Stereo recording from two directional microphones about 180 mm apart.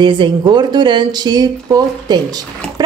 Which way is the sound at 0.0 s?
25° right (ahead or behind).